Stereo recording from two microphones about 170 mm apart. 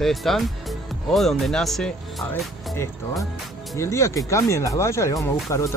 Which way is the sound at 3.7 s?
15° left (ahead or behind).